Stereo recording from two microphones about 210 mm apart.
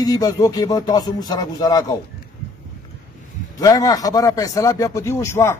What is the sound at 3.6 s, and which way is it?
A man's voice, 15° left (ahead or behind).